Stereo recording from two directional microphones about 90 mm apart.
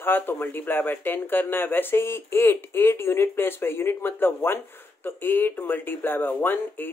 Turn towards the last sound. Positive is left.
turn(degrees=20)  # may be behind; listen again after turning